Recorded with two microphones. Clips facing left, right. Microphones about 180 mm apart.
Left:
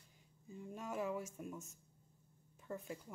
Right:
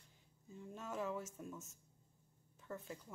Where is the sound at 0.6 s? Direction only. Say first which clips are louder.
Left 2 dB; 10° left (ahead or behind).